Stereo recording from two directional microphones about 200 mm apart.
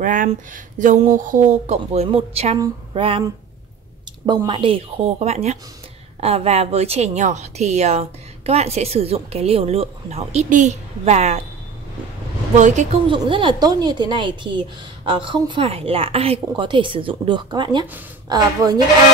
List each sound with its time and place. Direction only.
0.0 s a woman's voice: 40° right (ahead or behind)
4.3 s a woman's voice: 25° right (ahead or behind)
12.5 s a woman's voice: 35° right (ahead or behind); by 18.8 s 15° right (ahead or behind)